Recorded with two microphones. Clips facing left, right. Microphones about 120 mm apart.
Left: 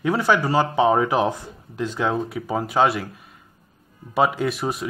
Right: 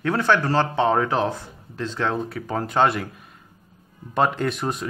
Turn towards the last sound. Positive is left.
turn(degrees=5)  # may be behind; listen again after turning